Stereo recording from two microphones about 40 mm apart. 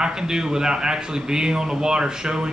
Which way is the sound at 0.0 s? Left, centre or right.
Centre.